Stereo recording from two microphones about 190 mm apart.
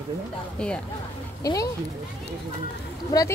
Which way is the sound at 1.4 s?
20° left (ahead or behind).